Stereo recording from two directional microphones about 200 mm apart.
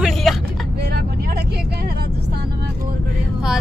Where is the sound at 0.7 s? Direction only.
50° right (ahead or behind).